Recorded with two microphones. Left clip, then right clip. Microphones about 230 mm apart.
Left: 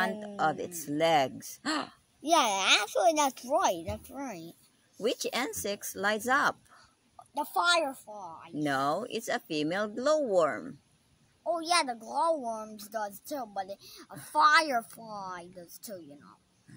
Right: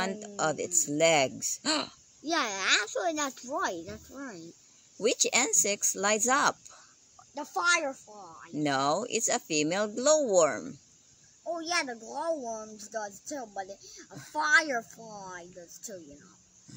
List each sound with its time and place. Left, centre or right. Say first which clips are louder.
0.0 s speech: left 2 dB; centre
2.3 s speech: left 3 dB; left
5.0 s speech: right 4 dB; centre
7.3 s speech: left 1 dB; left
8.5 s speech: right 2 dB; centre
11.5 s speech: left 3 dB; left